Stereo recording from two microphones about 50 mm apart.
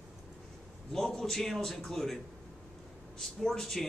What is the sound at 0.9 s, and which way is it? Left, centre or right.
A man's voice, centre.